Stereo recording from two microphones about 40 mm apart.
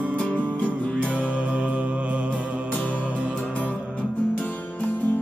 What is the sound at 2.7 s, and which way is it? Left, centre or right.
Music, left.